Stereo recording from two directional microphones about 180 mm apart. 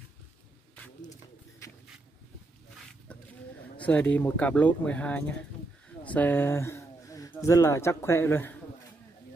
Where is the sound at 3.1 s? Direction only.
5° left (ahead or behind).